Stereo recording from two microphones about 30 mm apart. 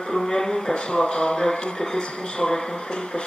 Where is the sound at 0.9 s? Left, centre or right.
Left.